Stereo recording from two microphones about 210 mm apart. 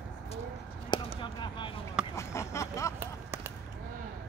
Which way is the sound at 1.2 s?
20° left (ahead or behind).